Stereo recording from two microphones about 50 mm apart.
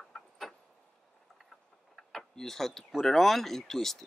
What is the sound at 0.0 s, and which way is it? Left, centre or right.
Vehicle, centre.